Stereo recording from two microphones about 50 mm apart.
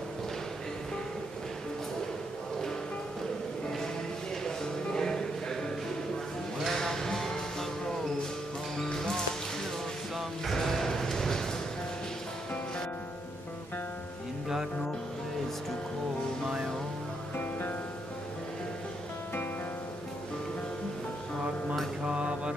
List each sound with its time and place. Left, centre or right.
4.5 s music: centre
6.7 s music: centre
8.8 s music: centre
10.1 s a sound: centre
17.4 s music: left
22.0 s mantra: right